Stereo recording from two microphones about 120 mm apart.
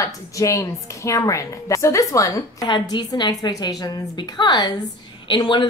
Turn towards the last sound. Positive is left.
turn(degrees=35)  # may be behind; listen again after turning